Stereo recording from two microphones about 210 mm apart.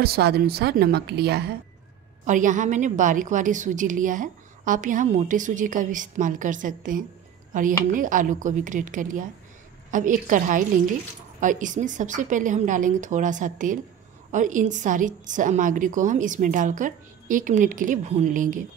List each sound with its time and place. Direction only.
0.0 s a woman's voice: 50° right (ahead or behind)
2.2 s a woman's voice: 35° right (ahead or behind)